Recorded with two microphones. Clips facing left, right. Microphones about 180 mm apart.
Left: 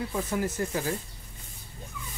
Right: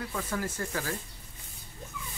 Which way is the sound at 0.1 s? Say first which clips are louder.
Left 4 dB; 20° left (ahead or behind).